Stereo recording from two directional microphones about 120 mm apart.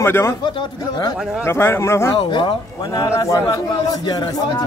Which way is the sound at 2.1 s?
40° left (ahead or behind).